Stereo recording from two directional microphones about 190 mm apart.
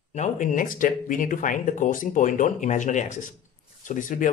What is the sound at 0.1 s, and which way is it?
Speech, 40° left (ahead or behind).